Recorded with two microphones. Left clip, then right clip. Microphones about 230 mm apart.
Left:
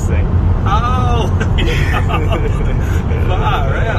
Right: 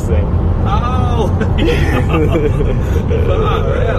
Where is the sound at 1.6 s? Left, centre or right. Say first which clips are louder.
Right 4 dB; right.